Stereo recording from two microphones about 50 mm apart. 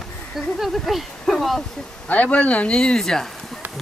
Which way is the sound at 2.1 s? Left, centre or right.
Left.